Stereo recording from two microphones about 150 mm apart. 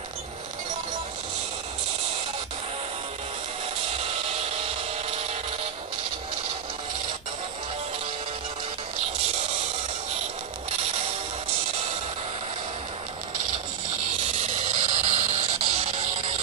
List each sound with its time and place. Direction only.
14.4 s music: 50° right (ahead or behind)